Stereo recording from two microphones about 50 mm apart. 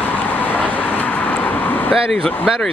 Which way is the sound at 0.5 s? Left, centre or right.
Left.